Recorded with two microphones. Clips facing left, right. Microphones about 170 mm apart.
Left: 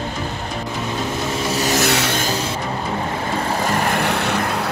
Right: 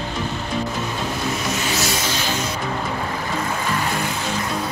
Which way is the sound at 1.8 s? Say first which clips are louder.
Left 5 dB; 65° left (ahead or behind).